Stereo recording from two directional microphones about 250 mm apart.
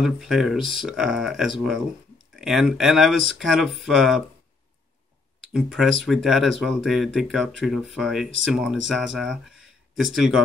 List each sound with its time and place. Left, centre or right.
0.0 s speech: centre
5.5 s speech: centre